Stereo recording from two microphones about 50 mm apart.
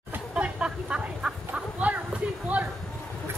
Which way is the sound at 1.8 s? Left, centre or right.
Right.